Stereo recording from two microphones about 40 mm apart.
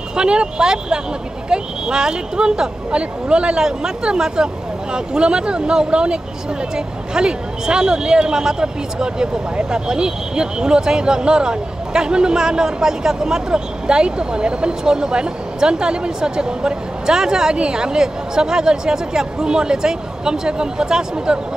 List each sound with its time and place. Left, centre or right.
0.1 s speech: right
7.2 s speech: right